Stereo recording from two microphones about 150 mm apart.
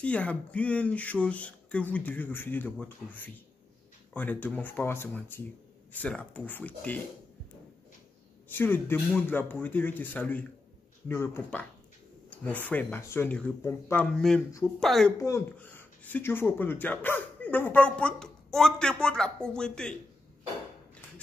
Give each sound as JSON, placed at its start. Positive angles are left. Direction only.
{"t": 0.0, "sound": "speech", "side_deg": 10}
{"t": 8.5, "sound": "speech", "side_deg": 15}
{"t": 14.1, "sound": "speech", "side_deg": 5}
{"t": 15.2, "sound": "speech", "side_deg": 15}